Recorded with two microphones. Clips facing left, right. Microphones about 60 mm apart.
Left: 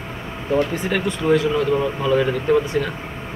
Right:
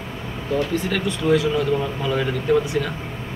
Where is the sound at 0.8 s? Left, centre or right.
Centre.